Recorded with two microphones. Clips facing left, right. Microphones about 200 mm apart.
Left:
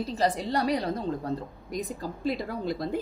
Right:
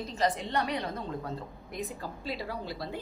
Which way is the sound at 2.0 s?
50° left (ahead or behind).